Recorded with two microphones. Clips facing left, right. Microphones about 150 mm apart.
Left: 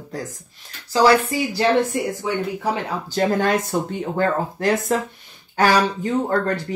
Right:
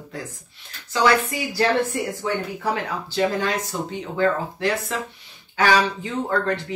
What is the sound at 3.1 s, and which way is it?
Speech, 50° left (ahead or behind).